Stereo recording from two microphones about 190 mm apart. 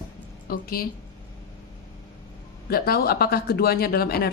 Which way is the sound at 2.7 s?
55° left (ahead or behind).